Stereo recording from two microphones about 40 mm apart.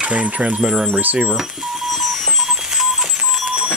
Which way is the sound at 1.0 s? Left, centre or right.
Right.